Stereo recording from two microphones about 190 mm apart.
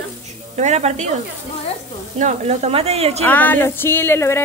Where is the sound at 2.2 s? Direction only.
35° right (ahead or behind).